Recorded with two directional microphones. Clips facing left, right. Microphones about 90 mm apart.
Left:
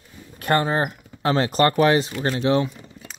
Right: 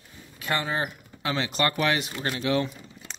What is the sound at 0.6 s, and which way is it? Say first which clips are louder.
Speech: left 6 dB; 40° left (ahead or behind).